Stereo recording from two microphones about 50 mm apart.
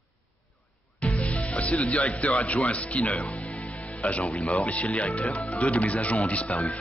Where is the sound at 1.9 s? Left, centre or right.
Left.